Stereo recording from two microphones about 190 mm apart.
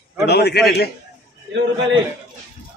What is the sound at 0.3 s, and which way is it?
Speech, 60° left (ahead or behind).